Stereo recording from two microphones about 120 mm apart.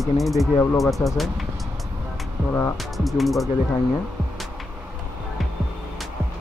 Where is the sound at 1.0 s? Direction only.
20° left (ahead or behind).